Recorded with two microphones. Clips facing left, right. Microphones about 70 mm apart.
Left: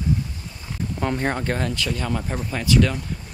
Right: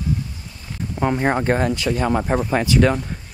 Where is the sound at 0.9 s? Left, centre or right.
Centre.